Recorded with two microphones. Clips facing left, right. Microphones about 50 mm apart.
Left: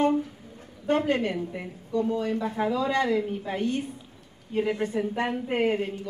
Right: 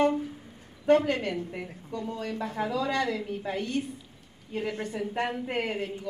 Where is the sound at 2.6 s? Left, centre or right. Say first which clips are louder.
Left 2 dB; left.